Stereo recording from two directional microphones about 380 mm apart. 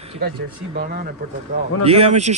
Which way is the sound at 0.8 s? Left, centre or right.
Right.